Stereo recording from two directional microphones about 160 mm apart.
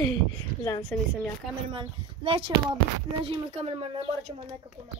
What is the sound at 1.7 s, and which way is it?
Speech, 35° right (ahead or behind).